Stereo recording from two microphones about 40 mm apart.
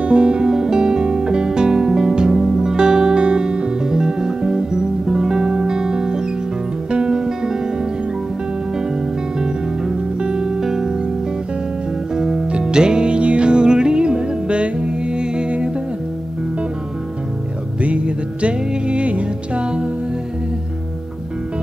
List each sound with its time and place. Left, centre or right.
0.0 s music: right
9.4 s music: centre
12.2 s music: centre
17.8 s music: right